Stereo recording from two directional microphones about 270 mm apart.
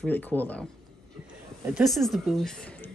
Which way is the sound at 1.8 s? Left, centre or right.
Centre.